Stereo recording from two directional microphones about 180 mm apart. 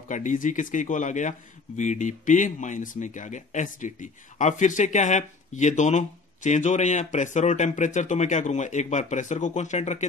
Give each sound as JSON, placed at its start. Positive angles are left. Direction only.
{"t": 0.1, "sound": "speech", "side_deg": 45}